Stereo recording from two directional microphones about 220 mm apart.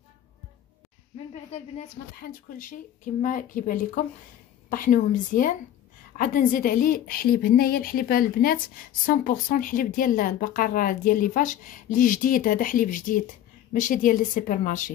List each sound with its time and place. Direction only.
1.1 s a woman's voice: 30° left (ahead or behind)